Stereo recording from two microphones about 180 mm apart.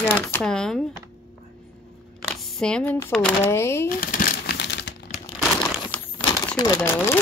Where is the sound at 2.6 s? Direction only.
5° left (ahead or behind).